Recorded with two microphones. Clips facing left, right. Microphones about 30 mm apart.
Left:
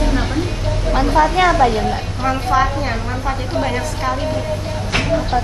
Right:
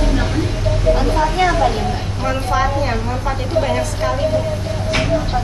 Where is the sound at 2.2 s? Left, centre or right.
Centre.